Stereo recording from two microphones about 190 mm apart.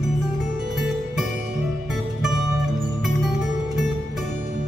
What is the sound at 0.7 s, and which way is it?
Music, centre (ahead or behind).